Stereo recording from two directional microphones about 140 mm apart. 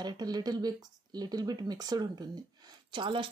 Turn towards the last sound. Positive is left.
turn(degrees=-35)  # may be behind; listen again after turning